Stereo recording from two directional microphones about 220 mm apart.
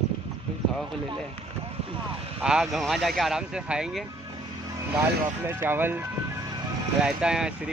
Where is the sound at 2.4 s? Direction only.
5° right (ahead or behind).